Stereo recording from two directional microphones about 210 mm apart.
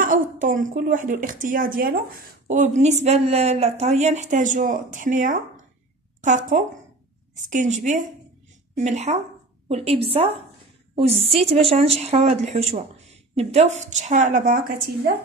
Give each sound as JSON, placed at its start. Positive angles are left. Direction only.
{"t": 0.0, "sound": "a woman's voice", "side_deg": -40}